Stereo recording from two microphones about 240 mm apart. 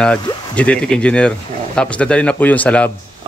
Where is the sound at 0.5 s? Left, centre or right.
Centre.